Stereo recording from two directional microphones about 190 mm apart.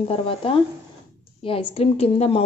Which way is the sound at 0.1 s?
30° left (ahead or behind).